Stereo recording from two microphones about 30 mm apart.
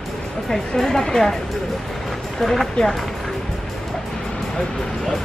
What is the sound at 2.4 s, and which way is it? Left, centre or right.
Speech, centre.